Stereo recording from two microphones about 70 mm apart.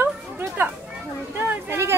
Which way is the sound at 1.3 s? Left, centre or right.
Right.